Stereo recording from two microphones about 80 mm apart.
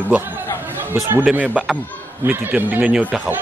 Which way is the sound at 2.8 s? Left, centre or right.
Centre.